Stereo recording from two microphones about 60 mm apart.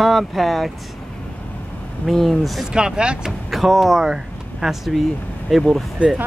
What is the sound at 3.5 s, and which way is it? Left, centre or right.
Speech, centre.